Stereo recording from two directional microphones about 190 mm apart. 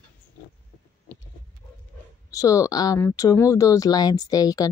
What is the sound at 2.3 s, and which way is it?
Speech, 15° left (ahead or behind).